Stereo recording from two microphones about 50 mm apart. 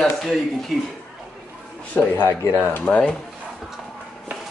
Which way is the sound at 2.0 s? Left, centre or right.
Left.